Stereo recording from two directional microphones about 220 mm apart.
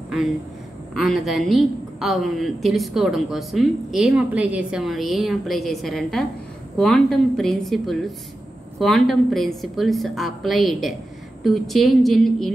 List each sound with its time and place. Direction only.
0.9 s a woman's voice: centre (ahead or behind)